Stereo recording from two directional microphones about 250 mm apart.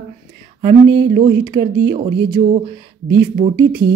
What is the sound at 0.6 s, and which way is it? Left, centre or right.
Speech, right.